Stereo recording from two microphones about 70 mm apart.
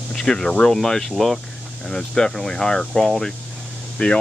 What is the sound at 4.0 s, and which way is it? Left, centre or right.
Speech, centre.